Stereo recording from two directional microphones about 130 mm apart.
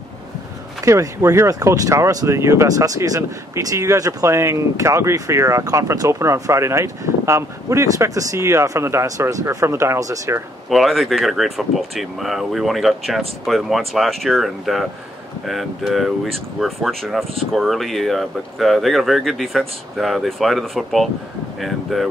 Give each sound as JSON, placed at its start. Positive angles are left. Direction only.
{"t": 0.8, "sound": "speech", "side_deg": -25}
{"t": 10.7, "sound": "speech", "side_deg": 0}